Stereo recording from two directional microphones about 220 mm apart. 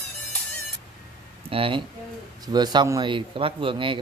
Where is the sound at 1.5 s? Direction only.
25° right (ahead or behind).